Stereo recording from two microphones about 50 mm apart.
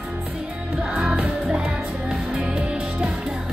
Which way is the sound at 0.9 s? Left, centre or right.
Right.